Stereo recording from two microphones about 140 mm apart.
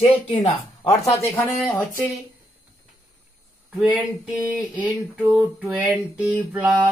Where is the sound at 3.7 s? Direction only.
10° right (ahead or behind).